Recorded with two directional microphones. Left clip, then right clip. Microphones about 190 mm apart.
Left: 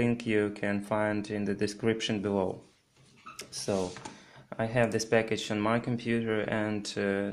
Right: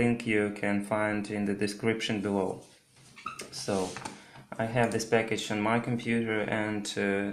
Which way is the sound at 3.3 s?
45° left (ahead or behind).